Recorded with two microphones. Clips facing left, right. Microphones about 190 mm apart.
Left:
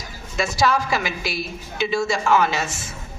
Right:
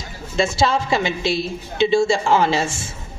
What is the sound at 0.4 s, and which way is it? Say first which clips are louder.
A woman's voice: right 2 dB; 25° right (ahead or behind).